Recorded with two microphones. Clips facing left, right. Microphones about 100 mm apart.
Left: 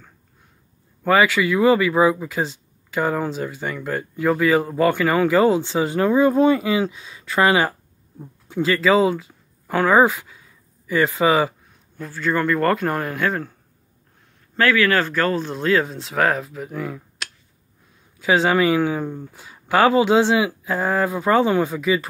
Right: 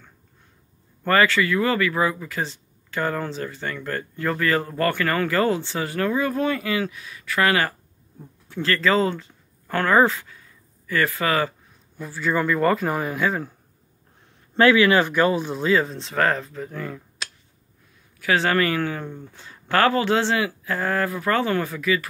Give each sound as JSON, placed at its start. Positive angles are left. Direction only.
{"t": 1.0, "sound": "speech", "side_deg": 15}
{"t": 12.0, "sound": "speech", "side_deg": -5}
{"t": 14.6, "sound": "speech", "side_deg": -20}
{"t": 15.5, "sound": "speech", "side_deg": 0}
{"t": 18.2, "sound": "speech", "side_deg": 15}